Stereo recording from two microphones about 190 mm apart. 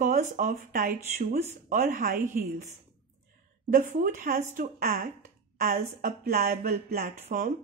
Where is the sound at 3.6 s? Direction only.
40° right (ahead or behind).